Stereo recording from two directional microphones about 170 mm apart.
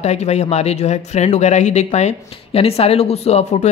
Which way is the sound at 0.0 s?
40° left (ahead or behind).